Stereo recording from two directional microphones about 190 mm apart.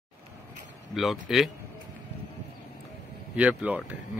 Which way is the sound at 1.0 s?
Centre (ahead or behind).